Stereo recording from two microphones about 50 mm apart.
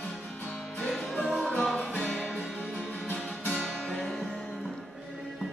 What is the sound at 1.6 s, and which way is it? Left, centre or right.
Music, centre.